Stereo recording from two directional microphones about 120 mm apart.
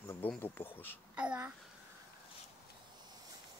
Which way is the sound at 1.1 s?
10° right (ahead or behind).